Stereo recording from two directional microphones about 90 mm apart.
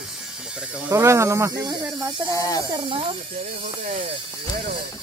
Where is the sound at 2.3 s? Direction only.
40° left (ahead or behind).